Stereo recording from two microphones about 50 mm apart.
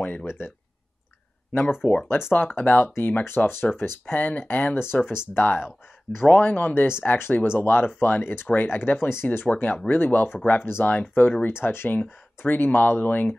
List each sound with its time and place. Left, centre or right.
0.0 s a sound: left
1.5 s speech: left
2.4 s speech: left
3.3 s speech: left
4.1 s speech: left
4.9 s speech: left
6.4 s speech: left
6.7 s speech: left
9.1 s speech: left
9.8 s speech: left
11.4 s speech: left